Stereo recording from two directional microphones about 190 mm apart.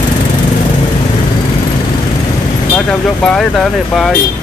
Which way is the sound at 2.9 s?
5° left (ahead or behind).